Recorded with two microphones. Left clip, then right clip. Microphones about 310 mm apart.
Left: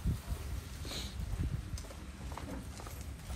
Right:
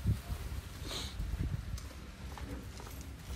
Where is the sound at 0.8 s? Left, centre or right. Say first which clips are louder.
Right 2 dB; right.